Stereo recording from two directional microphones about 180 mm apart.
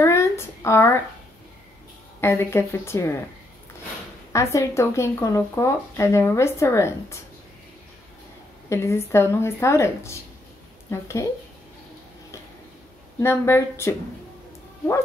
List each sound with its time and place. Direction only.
0.0 s a sound: 15° left (ahead or behind)
2.1 s speech: 15° left (ahead or behind)
4.3 s speech: 15° left (ahead or behind)
8.6 s speech: 15° left (ahead or behind)
13.2 s speech: 15° left (ahead or behind)